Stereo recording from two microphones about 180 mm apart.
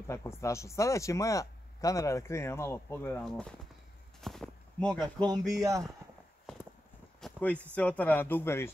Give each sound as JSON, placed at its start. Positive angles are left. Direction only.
{"t": 0.1, "sound": "speech", "side_deg": 15}
{"t": 3.3, "sound": "speech", "side_deg": 5}
{"t": 4.2, "sound": "a sound", "side_deg": 0}
{"t": 5.0, "sound": "music", "side_deg": -25}
{"t": 5.5, "sound": "speech", "side_deg": -20}
{"t": 7.2, "sound": "a sound", "side_deg": 5}
{"t": 7.7, "sound": "speech", "side_deg": 10}